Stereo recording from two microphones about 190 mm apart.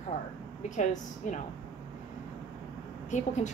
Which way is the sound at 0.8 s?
40° left (ahead or behind).